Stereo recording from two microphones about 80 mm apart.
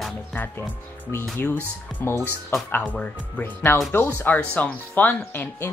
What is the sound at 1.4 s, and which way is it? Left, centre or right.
Speech, left.